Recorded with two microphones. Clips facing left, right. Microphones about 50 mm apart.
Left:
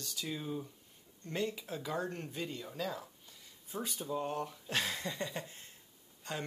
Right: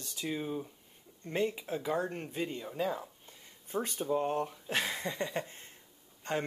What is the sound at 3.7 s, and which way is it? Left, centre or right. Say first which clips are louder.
Speech: right 6 dB; right.